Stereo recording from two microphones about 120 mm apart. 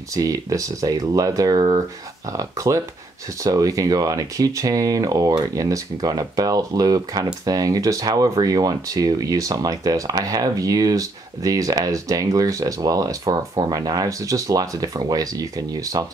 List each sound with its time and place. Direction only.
0.1 s speech: 25° right (ahead or behind)